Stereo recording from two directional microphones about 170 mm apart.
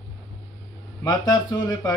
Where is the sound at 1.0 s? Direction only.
25° left (ahead or behind).